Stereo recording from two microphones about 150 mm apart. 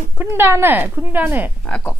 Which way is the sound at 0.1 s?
15° right (ahead or behind).